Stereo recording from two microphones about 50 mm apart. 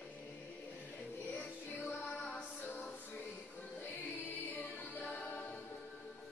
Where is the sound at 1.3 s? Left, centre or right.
Left.